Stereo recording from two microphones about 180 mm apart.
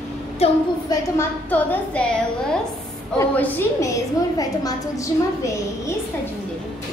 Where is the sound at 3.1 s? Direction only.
10° left (ahead or behind).